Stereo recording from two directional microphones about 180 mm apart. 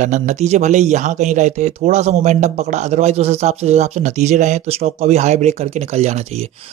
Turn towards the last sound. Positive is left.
turn(degrees=-35)  # may be behind; listen again after turning